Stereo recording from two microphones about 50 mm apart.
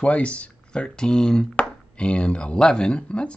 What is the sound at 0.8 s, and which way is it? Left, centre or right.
Speech, centre.